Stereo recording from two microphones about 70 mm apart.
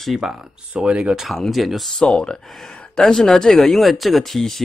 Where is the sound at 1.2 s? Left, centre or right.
Centre.